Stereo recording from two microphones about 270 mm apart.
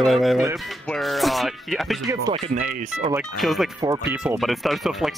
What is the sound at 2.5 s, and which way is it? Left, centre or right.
Speech, right.